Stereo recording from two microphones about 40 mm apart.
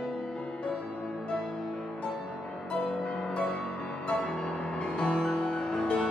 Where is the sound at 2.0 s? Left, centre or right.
Left.